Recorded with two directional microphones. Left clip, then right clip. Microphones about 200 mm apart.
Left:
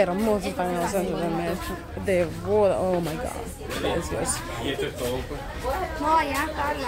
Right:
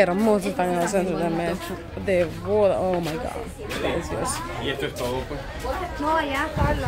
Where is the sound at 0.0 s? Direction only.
20° right (ahead or behind).